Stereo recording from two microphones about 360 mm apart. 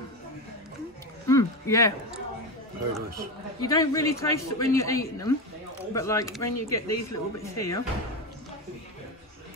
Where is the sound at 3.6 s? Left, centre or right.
Centre.